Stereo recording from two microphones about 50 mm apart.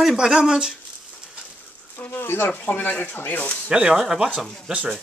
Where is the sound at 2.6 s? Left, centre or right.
Left.